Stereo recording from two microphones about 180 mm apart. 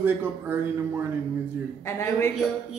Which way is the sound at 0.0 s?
10° right (ahead or behind).